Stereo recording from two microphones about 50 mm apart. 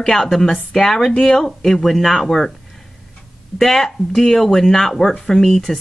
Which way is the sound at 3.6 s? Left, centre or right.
Centre.